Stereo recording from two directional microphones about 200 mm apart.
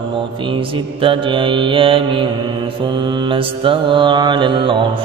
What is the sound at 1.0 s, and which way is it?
Mantra, 25° right (ahead or behind).